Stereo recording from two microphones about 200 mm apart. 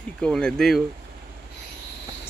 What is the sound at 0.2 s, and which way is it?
Speech, 5° left (ahead or behind).